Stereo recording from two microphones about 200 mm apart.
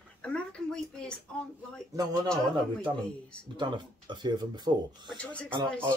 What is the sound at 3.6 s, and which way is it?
Speech, 20° right (ahead or behind).